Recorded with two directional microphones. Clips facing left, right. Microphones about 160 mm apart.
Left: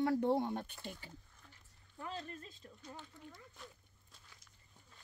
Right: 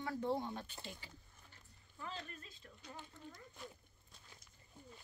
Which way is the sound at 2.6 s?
20° left (ahead or behind).